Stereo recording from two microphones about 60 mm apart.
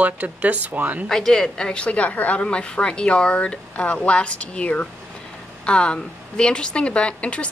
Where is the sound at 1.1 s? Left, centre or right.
Centre.